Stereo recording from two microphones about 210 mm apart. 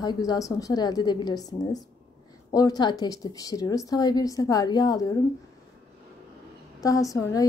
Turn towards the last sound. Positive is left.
turn(degrees=15)  # may be behind; listen again after turning